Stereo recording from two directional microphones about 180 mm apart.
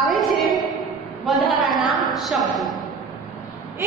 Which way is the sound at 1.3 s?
Centre (ahead or behind).